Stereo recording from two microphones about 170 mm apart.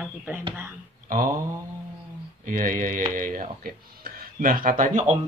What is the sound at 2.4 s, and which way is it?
Speech, 50° right (ahead or behind).